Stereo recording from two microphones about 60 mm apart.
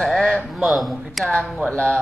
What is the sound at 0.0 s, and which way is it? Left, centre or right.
Speech, centre.